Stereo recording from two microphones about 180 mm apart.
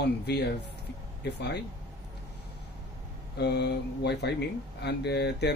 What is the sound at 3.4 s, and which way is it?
Speech, 70° left (ahead or behind).